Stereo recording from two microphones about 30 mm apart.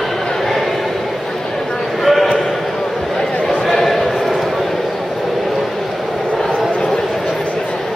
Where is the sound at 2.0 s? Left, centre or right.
Centre.